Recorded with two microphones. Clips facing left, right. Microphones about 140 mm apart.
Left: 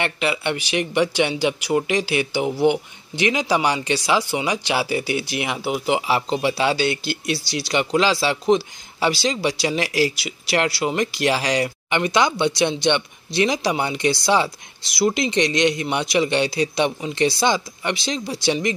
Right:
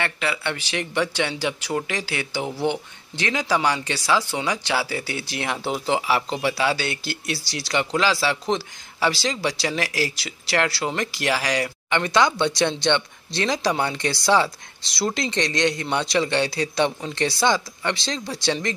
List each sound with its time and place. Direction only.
0.0 s speech: 20° left (ahead or behind)